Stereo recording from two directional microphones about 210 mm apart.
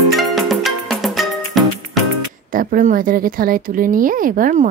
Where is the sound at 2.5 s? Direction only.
40° right (ahead or behind).